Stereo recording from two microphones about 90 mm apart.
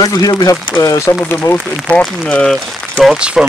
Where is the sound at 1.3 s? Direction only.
25° left (ahead or behind).